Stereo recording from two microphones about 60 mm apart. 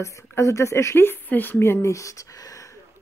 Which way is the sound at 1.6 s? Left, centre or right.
Left.